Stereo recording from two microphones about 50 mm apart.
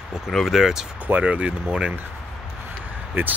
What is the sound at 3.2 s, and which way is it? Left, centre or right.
Speech, right.